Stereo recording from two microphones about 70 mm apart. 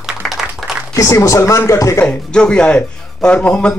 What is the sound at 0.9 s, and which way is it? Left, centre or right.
Speech, left.